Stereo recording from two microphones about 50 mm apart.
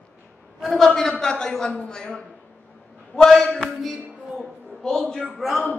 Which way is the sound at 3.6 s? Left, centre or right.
Centre.